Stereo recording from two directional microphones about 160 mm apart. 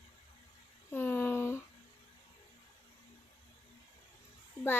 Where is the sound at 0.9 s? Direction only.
15° left (ahead or behind).